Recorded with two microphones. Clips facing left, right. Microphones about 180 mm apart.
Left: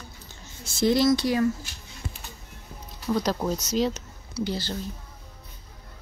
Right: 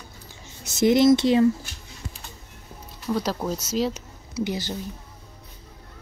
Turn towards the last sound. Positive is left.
turn(degrees=-15)  # may be behind; listen again after turning